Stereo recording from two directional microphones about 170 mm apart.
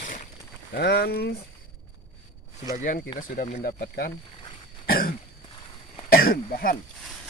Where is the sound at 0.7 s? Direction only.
70° left (ahead or behind).